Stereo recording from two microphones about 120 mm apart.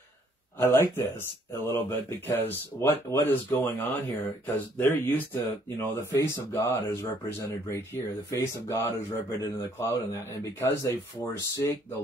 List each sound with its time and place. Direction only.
0.6 s speech: 20° left (ahead or behind)